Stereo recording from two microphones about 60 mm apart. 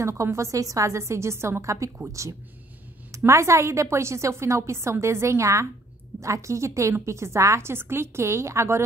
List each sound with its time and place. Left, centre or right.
0.0 s a woman's voice: right